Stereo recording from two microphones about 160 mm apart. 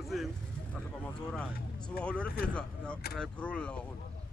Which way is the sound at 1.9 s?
5° left (ahead or behind).